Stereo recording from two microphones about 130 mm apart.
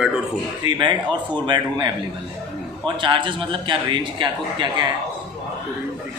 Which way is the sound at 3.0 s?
40° right (ahead or behind).